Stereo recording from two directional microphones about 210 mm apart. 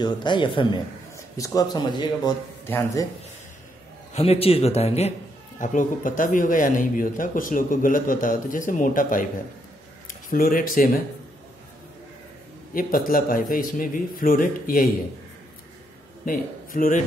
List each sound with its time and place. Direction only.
0.0 s a man's voice: 20° left (ahead or behind)
4.1 s a man's voice: 30° left (ahead or behind)
12.7 s speech: 40° left (ahead or behind)
16.3 s a man's voice: 40° left (ahead or behind)